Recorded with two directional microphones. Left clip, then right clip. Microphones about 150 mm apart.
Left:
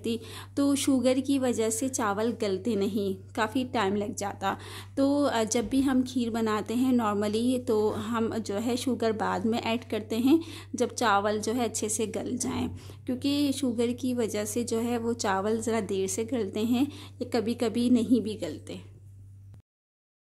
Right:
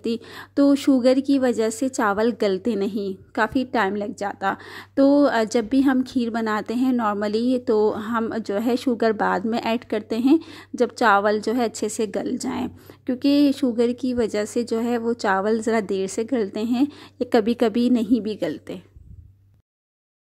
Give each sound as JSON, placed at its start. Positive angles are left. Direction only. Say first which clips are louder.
{"t": 0.0, "sound": "a woman's voice", "louder": "right 6 dB", "side_deg": -35}